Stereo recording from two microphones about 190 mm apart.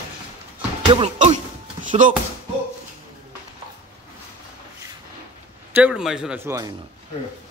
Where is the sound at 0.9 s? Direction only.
35° right (ahead or behind).